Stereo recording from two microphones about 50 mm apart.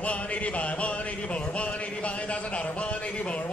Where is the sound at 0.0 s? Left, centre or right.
Left.